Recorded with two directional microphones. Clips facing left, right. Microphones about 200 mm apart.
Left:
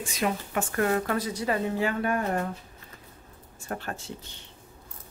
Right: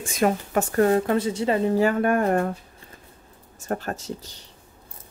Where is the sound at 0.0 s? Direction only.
50° right (ahead or behind); by 1.8 s 25° right (ahead or behind).